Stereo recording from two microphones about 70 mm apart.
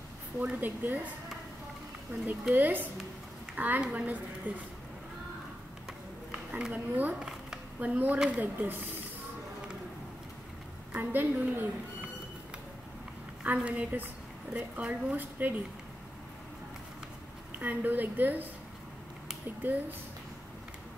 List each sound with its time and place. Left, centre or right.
0.6 s a woman's voice: right
2.5 s a woman's voice: right
6.7 s a woman's voice: right
10.9 s a woman's voice: right
13.4 s a woman's voice: centre
17.6 s a woman's voice: right
19.6 s a woman's voice: right